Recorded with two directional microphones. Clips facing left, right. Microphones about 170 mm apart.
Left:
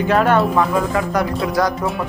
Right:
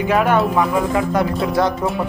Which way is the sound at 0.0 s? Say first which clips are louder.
Left 1 dB; 10° right (ahead or behind).